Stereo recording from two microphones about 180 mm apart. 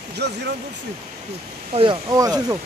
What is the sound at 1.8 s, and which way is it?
Speech, 25° right (ahead or behind).